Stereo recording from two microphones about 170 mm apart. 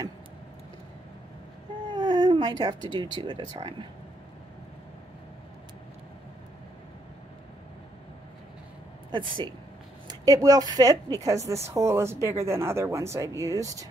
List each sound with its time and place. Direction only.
1.9 s speech: 25° right (ahead or behind)
9.1 s a woman's voice: 25° right (ahead or behind)